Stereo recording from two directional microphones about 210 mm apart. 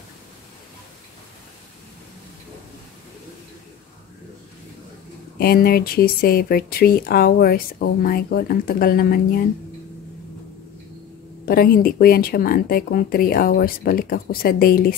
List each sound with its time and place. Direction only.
5.4 s speech: 45° left (ahead or behind)
11.4 s speech: 45° left (ahead or behind)